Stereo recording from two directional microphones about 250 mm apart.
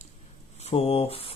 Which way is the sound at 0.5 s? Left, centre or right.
Left.